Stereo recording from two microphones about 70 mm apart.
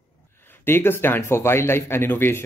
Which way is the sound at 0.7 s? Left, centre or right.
Left.